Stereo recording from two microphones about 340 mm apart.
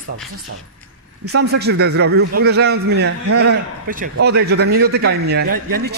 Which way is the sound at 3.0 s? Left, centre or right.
Right.